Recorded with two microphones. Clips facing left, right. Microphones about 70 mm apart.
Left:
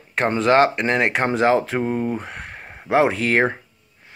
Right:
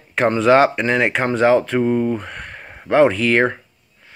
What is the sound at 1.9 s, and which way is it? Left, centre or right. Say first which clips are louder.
Speech: right 5 dB; centre.